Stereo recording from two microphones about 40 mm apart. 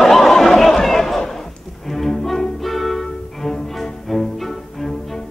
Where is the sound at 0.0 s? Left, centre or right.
Centre.